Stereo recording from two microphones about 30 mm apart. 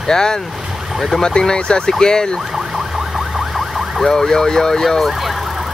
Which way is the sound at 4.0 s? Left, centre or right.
Centre.